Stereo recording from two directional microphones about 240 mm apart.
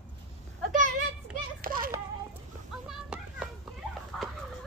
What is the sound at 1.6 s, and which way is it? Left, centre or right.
Speech, right.